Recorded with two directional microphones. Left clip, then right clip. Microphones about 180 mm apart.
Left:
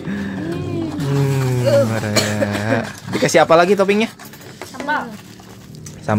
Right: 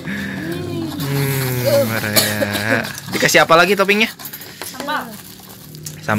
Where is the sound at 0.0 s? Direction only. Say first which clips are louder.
Right 1 dB; 5° left (ahead or behind).